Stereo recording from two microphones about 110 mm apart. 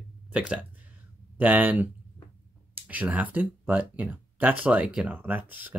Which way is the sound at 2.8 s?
15° right (ahead or behind).